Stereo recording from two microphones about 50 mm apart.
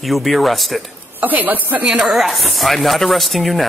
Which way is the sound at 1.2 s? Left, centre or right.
Right.